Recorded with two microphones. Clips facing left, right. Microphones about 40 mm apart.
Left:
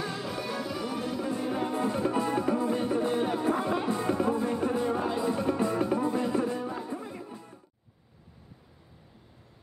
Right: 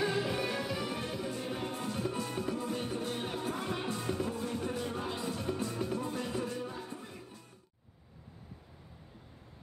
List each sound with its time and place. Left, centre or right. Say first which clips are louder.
0.0 s music: right 2 dB; centre
1.4 s music: left 8 dB; centre